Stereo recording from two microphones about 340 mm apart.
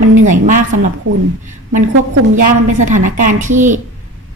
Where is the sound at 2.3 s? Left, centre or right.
Right.